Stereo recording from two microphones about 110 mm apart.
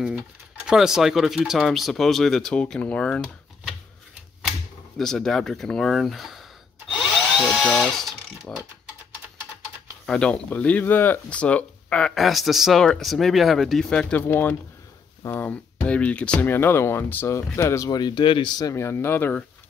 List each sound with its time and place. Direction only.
0.7 s speech: 5° right (ahead or behind)
4.5 s speech: 5° left (ahead or behind)
10.0 s speech: 10° left (ahead or behind)
14.2 s speech: 20° left (ahead or behind); by 18.5 s 50° left (ahead or behind)
18.6 s speech: 30° left (ahead or behind)